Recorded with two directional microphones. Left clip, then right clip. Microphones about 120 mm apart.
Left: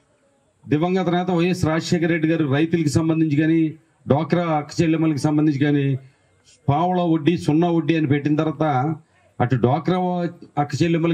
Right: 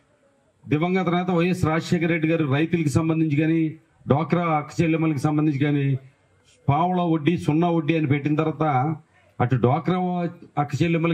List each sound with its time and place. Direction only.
0.7 s a man's voice: 50° left (ahead or behind)
8.5 s a man's voice: 50° left (ahead or behind)